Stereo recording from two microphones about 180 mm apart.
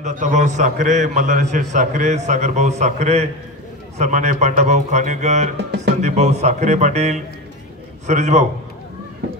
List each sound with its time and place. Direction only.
0.0 s a man's voice: 40° right (ahead or behind)